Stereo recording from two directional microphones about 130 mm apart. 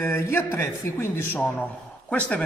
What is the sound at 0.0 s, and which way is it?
A man's voice, 20° left (ahead or behind).